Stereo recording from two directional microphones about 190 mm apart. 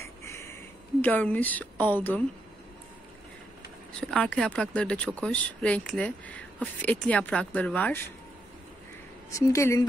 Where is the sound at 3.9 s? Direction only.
5° left (ahead or behind).